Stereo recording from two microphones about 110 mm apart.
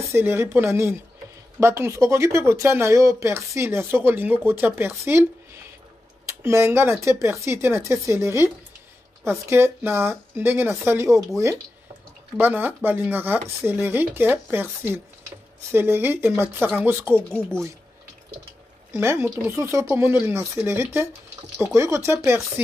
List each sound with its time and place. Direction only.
0.1 s speech: 20° right (ahead or behind)
6.2 s speech: 25° right (ahead or behind)
9.5 s speech: 20° right (ahead or behind)
12.4 s speech: 15° right (ahead or behind)
18.9 s speech: 20° right (ahead or behind)